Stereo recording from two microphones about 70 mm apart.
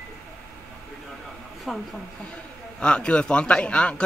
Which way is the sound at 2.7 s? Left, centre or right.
Centre.